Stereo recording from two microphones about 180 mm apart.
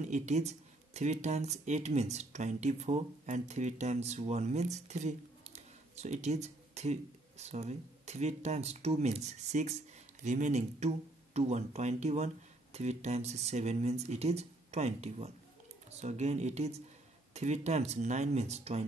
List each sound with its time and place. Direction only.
0.0 s speech: 40° right (ahead or behind)